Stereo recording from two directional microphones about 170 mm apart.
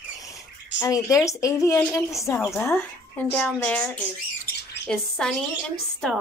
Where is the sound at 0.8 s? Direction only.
15° left (ahead or behind).